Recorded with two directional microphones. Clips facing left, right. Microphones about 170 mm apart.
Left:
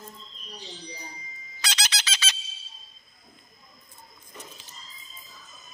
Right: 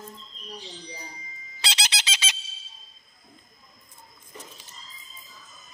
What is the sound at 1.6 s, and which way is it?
Squeak, 30° right (ahead or behind).